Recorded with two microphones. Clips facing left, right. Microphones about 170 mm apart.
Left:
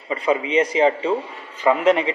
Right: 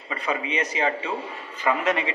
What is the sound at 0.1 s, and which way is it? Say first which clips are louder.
A man's voice: left 8 dB; 25° left (ahead or behind).